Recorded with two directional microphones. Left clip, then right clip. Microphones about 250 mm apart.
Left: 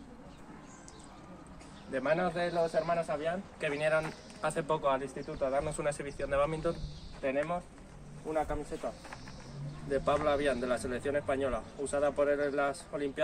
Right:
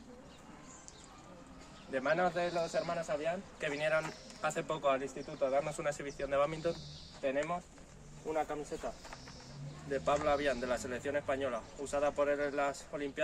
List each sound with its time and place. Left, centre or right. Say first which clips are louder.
1.9 s a man's voice: left 1 dB; centre